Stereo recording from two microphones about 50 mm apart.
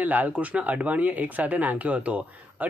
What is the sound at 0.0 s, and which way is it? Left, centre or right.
Speech, right.